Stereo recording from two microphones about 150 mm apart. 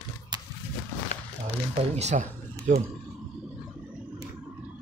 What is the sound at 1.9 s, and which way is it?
Speech, 50° right (ahead or behind).